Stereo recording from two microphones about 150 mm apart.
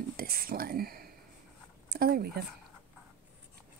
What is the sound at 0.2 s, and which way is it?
Speech, 80° right.